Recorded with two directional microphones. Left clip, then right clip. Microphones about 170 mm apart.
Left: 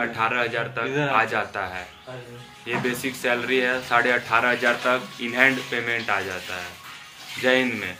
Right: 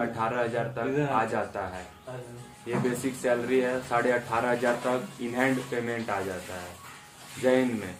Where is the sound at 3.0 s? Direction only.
15° right (ahead or behind).